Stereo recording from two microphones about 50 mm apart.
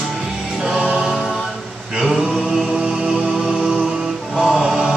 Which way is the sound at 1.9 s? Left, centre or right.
Centre.